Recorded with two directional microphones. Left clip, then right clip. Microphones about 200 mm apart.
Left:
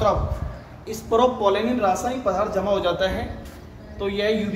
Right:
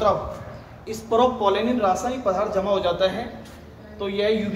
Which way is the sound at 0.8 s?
25° right (ahead or behind).